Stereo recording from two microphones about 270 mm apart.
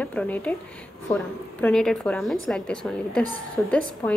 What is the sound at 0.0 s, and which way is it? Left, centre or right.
A woman's voice, centre.